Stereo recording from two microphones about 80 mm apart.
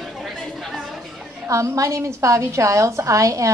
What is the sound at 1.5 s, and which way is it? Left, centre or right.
A woman's voice, right.